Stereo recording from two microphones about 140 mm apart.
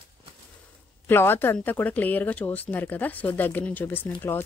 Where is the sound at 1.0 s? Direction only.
15° left (ahead or behind).